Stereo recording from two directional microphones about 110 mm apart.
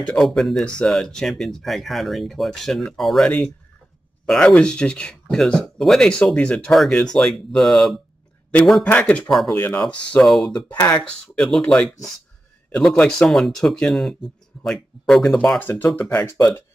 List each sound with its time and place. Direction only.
0.0 s speech: 5° left (ahead or behind)
8.8 s speech: 10° left (ahead or behind)
16.3 s speech: 30° left (ahead or behind)